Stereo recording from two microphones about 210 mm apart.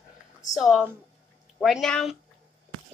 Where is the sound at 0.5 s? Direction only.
Centre (ahead or behind).